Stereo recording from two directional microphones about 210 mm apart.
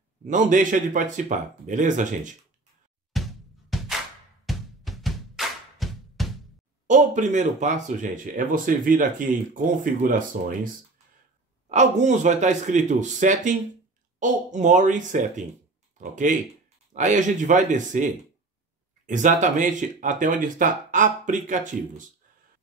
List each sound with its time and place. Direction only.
0.2 s speech: 35° right (ahead or behind)
3.1 s music: centre (ahead or behind)
4.5 s drum: centre (ahead or behind)
6.9 s speech: 35° right (ahead or behind)
11.7 s speech: 35° right (ahead or behind)